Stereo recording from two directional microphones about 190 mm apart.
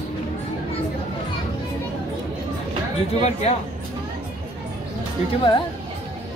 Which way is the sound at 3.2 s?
35° left (ahead or behind).